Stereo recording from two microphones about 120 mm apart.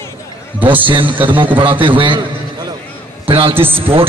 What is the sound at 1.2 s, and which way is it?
A man's voice, 45° right (ahead or behind).